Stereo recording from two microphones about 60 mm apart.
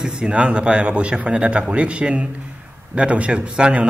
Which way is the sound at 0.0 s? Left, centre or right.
Centre.